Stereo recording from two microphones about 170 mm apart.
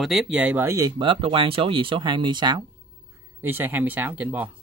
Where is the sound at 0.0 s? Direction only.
Centre (ahead or behind); by 2.6 s 25° right (ahead or behind).